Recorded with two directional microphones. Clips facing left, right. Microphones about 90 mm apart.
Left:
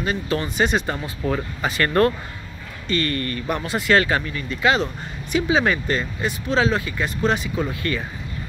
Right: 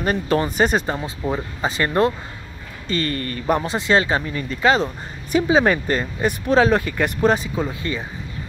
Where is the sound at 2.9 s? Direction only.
30° right (ahead or behind).